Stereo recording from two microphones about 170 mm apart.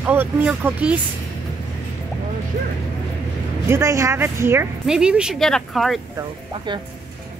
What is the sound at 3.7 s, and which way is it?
Speech, 15° right (ahead or behind).